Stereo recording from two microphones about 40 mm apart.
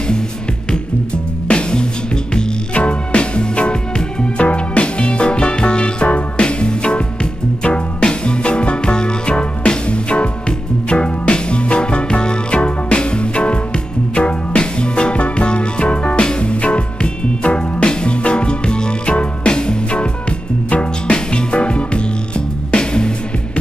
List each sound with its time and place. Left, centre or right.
0.7 s music: left
21.1 s music: left